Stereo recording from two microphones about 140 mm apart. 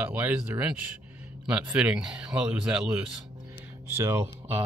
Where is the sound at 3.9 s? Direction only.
20° right (ahead or behind).